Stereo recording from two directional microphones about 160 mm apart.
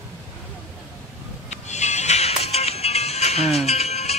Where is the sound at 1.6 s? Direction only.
45° left (ahead or behind).